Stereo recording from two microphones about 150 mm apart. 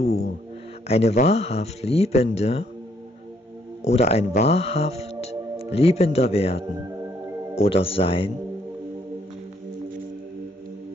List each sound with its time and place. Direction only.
0.0 s speech: 50° left (ahead or behind)
3.8 s speech: 50° left (ahead or behind)